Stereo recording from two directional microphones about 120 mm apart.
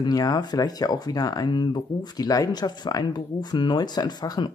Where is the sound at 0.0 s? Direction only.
35° left (ahead or behind).